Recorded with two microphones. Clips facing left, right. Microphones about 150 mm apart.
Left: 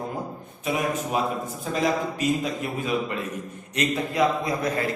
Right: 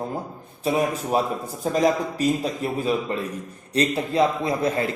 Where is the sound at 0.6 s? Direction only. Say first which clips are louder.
Right 3 dB; 35° right (ahead or behind).